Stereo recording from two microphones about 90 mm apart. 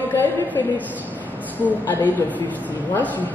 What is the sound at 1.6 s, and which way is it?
Speech, 20° left (ahead or behind).